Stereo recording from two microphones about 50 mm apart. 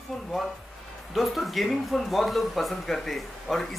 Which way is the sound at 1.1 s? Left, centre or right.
Centre.